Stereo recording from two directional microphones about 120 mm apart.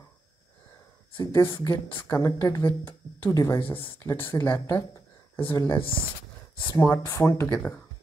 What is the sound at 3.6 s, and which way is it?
Speech, 45° left (ahead or behind).